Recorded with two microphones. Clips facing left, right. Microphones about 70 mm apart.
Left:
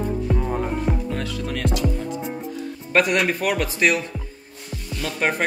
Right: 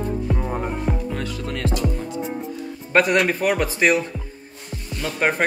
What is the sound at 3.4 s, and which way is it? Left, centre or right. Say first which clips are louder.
Speech: right 2 dB; right.